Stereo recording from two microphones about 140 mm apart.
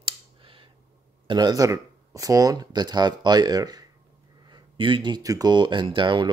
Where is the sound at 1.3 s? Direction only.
30° right (ahead or behind).